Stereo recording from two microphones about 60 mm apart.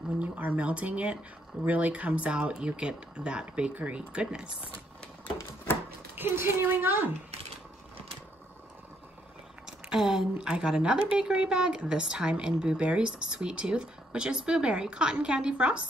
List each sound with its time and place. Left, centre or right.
0.2 s speech: right
6.1 s a woman's voice: right
9.7 s a sound: centre
10.3 s speech: centre